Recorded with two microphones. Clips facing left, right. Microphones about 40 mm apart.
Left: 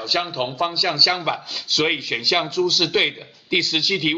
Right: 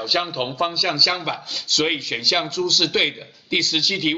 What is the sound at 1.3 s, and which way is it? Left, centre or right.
A man's voice, centre.